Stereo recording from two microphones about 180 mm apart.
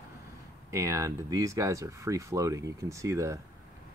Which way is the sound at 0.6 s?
15° right (ahead or behind).